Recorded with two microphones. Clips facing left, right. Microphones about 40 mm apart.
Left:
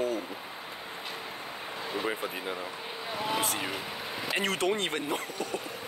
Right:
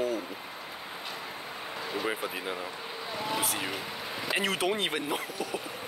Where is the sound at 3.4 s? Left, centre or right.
Centre.